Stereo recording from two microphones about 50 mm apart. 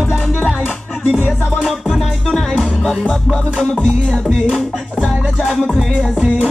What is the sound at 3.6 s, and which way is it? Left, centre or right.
Music, centre.